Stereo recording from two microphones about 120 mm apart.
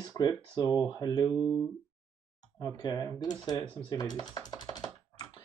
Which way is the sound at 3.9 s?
35° left (ahead or behind).